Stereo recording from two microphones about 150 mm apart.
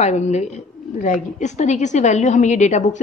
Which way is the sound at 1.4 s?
50° left (ahead or behind).